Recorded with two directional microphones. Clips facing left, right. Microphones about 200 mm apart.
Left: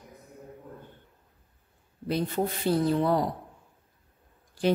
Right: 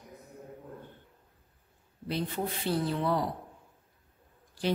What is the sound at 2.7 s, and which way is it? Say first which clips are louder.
Speech: left 5 dB; 45° left (ahead or behind).